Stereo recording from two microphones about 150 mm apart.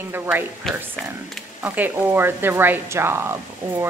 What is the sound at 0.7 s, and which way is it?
Speech, 5° left (ahead or behind).